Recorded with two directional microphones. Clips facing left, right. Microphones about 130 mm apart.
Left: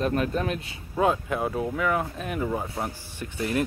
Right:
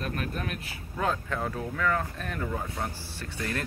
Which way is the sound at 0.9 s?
15° left (ahead or behind).